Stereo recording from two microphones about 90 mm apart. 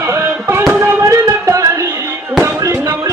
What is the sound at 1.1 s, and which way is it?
Music, 35° right (ahead or behind).